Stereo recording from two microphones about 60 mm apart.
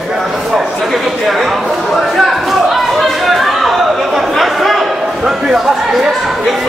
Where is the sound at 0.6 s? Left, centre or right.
Centre.